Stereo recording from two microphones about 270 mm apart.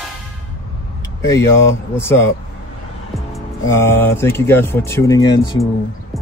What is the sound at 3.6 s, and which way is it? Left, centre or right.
Speech, centre.